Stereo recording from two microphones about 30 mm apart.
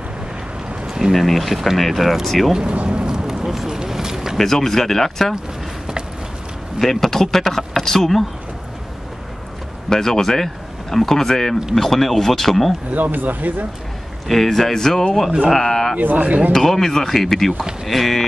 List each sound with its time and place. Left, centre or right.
1.1 s speech: centre
2.6 s speech: right
3.1 s a sound: right
4.4 s speech: centre
6.8 s speech: centre
9.8 s speech: centre
12.9 s speech: right
14.2 s speech: centre
16.2 s speech: right
16.5 s speech: centre